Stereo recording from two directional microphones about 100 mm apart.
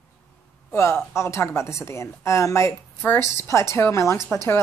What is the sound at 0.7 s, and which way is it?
Speech, 25° left (ahead or behind).